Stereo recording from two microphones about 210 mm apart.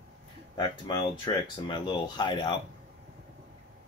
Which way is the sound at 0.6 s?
20° left (ahead or behind).